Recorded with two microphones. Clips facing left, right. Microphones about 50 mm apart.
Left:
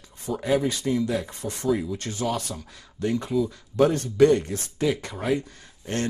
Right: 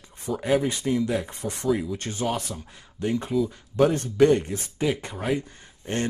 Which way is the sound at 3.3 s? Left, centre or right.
Centre.